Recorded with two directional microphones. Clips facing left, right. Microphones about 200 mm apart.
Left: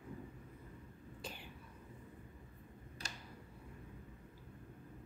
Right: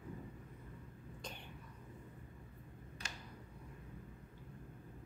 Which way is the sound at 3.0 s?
35° left (ahead or behind).